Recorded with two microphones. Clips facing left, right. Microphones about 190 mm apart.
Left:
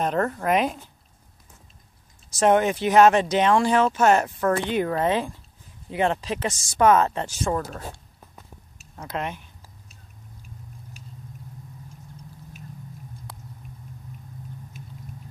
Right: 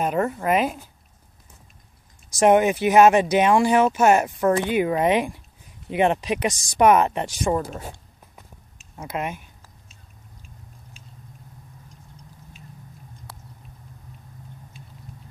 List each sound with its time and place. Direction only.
0.0 s speech: 10° right (ahead or behind)
2.3 s speech: 10° right (ahead or behind)
8.9 s speech: 10° right (ahead or behind)